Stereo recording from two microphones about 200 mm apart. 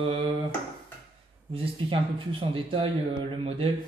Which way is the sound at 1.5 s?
25° right (ahead or behind).